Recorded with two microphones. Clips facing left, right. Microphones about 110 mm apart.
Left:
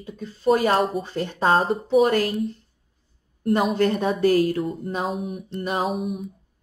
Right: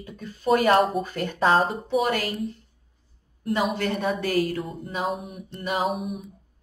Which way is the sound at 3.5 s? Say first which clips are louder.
Left 4 dB; 40° left (ahead or behind).